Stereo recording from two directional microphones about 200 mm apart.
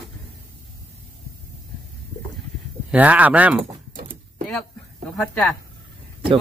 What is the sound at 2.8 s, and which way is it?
Speech, 5° right (ahead or behind).